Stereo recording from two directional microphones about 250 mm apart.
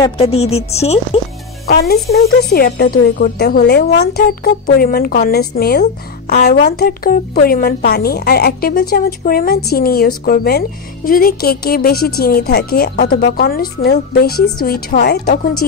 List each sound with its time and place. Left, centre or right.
0.0 s speech: left
1.7 s a child's voice: left